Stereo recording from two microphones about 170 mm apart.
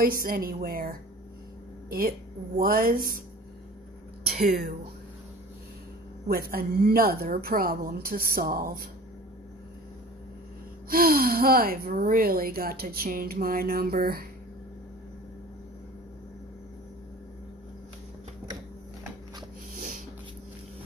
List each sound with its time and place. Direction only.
0.0 s speech: 60° right (ahead or behind)
4.3 s speech: 60° right (ahead or behind)
6.5 s speech: 60° right (ahead or behind)
10.9 s speech: 60° right (ahead or behind)
19.7 s a sound: 50° right (ahead or behind)